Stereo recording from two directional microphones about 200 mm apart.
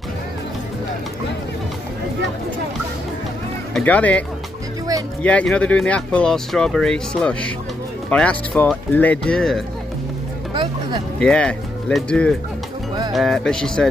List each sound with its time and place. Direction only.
3.7 s speech: 5° left (ahead or behind)
5.2 s speech: 5° left (ahead or behind)
10.5 s music: 25° right (ahead or behind)
11.1 s speech: 5° left (ahead or behind)